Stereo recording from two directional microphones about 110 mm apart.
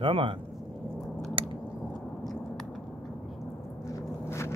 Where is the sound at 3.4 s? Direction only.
30° left (ahead or behind).